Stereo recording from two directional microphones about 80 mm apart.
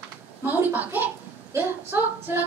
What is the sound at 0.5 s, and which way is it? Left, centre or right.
A woman's voice, right.